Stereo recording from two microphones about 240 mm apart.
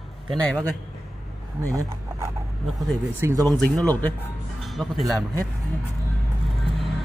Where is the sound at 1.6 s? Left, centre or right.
Centre.